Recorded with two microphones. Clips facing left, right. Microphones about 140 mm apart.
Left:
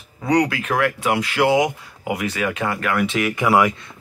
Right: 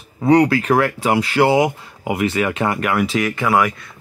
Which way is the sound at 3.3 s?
15° left (ahead or behind).